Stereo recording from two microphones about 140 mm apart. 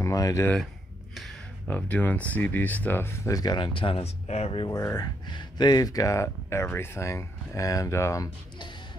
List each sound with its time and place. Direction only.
0.0 s speech: 25° left (ahead or behind)
1.7 s speech: 10° left (ahead or behind); by 4.6 s 45° left (ahead or behind)
4.6 s speech: 25° left (ahead or behind)